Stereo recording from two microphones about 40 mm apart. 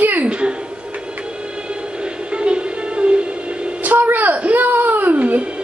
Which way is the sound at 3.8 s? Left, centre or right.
Right.